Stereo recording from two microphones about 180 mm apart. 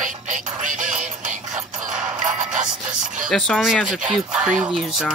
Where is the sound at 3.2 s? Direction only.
Centre (ahead or behind).